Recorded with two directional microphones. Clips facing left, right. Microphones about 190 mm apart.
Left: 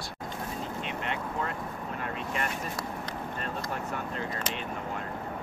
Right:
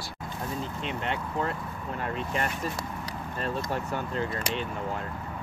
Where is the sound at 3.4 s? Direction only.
30° right (ahead or behind).